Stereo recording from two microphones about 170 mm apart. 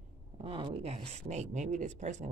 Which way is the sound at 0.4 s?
30° right (ahead or behind).